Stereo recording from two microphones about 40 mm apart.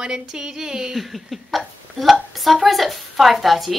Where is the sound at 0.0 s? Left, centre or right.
Centre.